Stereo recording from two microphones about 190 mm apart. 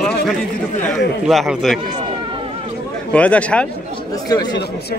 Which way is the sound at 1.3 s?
Centre (ahead or behind).